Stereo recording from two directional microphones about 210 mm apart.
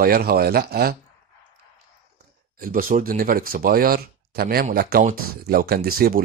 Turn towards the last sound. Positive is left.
turn(degrees=-45)  # may be behind; listen again after turning